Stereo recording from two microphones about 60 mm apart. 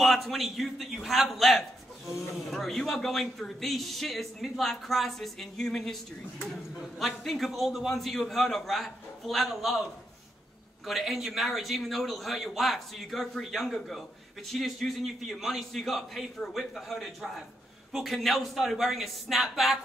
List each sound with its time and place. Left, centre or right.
0.0 s a man's voice: centre
7.0 s a man's voice: centre
10.9 s a man's voice: centre